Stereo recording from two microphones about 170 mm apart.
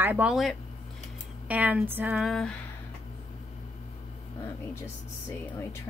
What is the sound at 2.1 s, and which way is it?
Speech, centre (ahead or behind).